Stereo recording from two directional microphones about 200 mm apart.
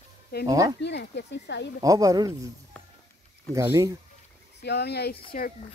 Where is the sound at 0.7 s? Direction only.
60° left (ahead or behind).